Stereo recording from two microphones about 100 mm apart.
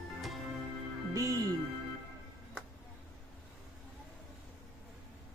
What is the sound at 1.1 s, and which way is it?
Music, 35° right (ahead or behind).